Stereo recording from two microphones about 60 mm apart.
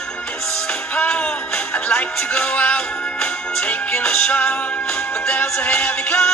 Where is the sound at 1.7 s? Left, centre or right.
Left.